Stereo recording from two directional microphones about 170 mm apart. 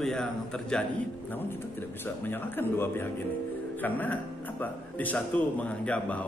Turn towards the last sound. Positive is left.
turn(degrees=10)  # may be behind; listen again after turning